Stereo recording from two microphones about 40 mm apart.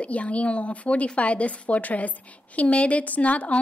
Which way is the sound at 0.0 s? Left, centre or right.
Left.